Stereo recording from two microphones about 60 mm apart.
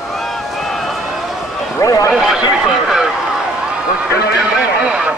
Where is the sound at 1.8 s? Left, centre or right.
Left.